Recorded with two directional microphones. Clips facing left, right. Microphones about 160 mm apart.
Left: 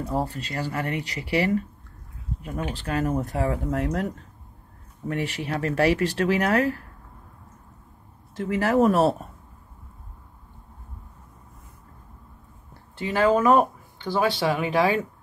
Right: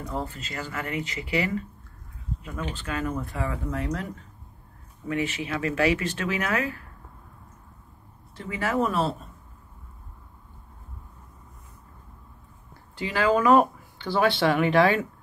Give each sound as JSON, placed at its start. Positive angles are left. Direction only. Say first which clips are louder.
{"t": 0.0, "sound": "speech", "louder": "left 5 dB", "side_deg": 35}
{"t": 2.7, "sound": "speech", "louder": "left 5 dB", "side_deg": 40}
{"t": 3.3, "sound": "speech", "louder": "left 5 dB", "side_deg": 65}
{"t": 5.0, "sound": "speech", "louder": "even", "side_deg": 40}
{"t": 8.4, "sound": "speech", "louder": "left 6 dB", "side_deg": 40}
{"t": 12.9, "sound": "speech", "louder": "left 2 dB", "side_deg": 25}
{"t": 13.6, "sound": "a sound", "louder": "even", "side_deg": 15}
{"t": 14.4, "sound": "speech", "louder": "right 2 dB", "side_deg": 10}